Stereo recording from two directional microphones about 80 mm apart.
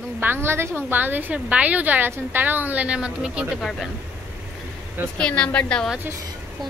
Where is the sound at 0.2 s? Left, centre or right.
Right; by 3.5 s centre.